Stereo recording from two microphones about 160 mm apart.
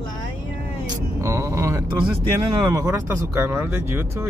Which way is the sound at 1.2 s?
15° right (ahead or behind).